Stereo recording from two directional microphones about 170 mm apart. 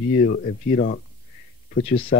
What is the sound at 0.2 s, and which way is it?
Speech, 60° left (ahead or behind).